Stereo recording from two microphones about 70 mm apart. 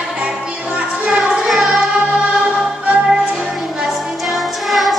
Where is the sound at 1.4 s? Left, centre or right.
Centre.